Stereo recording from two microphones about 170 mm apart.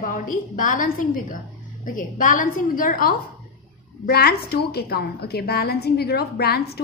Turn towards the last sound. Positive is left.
turn(degrees=70)  # may be behind; listen again after turning